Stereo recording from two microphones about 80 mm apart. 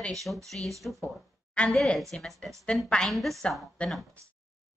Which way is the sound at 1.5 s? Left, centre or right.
Centre.